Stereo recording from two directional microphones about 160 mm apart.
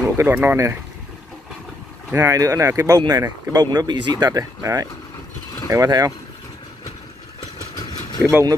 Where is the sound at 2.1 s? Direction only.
20° right (ahead or behind).